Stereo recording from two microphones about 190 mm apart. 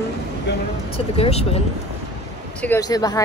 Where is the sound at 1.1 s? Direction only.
30° left (ahead or behind).